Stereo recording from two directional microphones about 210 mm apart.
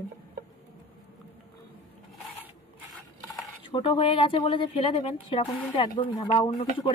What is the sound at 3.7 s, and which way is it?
Speech, 25° left (ahead or behind).